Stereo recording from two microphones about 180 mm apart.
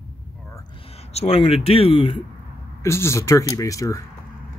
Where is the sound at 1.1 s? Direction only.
35° left (ahead or behind).